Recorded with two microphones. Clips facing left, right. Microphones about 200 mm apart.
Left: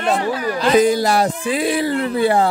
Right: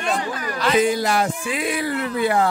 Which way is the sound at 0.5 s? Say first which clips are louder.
Left 4 dB; 35° left (ahead or behind).